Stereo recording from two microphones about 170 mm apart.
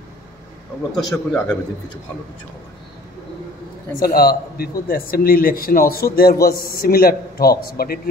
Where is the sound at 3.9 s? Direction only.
60° left (ahead or behind).